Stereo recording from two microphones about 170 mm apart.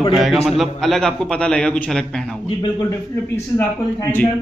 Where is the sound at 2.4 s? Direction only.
25° left (ahead or behind).